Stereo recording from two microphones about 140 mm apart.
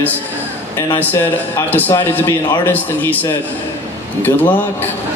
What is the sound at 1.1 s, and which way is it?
A man's voice, 15° left (ahead or behind).